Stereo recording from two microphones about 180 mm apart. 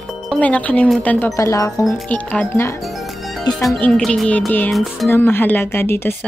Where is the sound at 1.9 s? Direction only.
5° left (ahead or behind).